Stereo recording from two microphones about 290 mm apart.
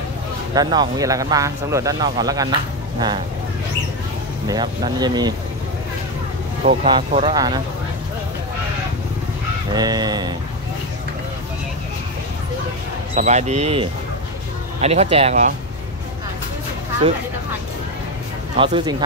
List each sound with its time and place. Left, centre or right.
0.6 s speech: centre
4.5 s speech: centre
6.6 s speech: right
9.8 s speech: centre
13.1 s speech: right
18.6 s speech: centre